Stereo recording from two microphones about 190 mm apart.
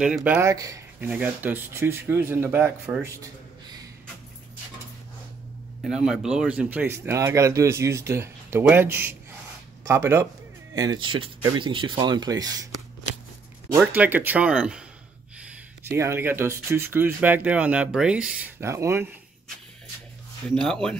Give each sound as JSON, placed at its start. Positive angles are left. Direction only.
{"t": 0.0, "sound": "speech", "side_deg": -5}
{"t": 5.8, "sound": "speech", "side_deg": 0}
{"t": 13.7, "sound": "speech", "side_deg": -10}
{"t": 20.4, "sound": "speech", "side_deg": 5}